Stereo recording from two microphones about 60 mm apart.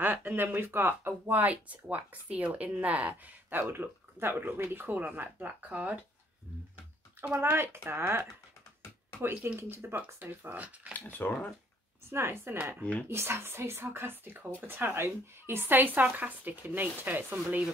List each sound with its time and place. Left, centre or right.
0.0 s speech: right
7.3 s speech: right
10.9 s speech: left
12.1 s a woman's voice: right